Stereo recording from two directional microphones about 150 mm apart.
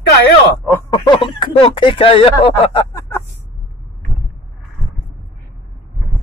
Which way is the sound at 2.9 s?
20° left (ahead or behind).